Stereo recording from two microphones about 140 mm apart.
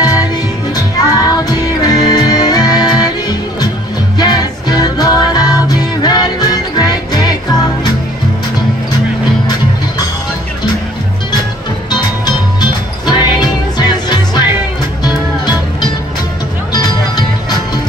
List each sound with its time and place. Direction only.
0.0 s music: 25° left (ahead or behind)
11.9 s music: 30° left (ahead or behind)